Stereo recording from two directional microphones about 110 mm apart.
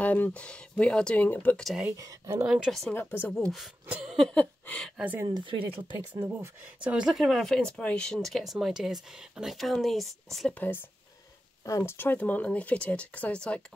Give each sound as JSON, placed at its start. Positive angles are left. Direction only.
{"t": 0.0, "sound": "speech", "side_deg": 15}
{"t": 1.9, "sound": "speech", "side_deg": -30}
{"t": 2.4, "sound": "speech", "side_deg": -5}
{"t": 2.9, "sound": "speech", "side_deg": 15}
{"t": 4.0, "sound": "a sound", "side_deg": -5}
{"t": 4.3, "sound": "speech", "side_deg": 10}
{"t": 5.2, "sound": "speech", "side_deg": -45}
{"t": 5.9, "sound": "speech", "side_deg": -30}
{"t": 6.8, "sound": "speech", "side_deg": -10}
{"t": 11.6, "sound": "speech", "side_deg": 25}